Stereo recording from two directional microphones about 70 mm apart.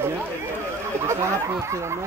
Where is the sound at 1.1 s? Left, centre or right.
Right.